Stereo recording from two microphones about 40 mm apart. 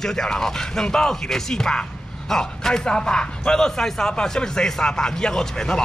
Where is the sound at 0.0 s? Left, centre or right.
Centre.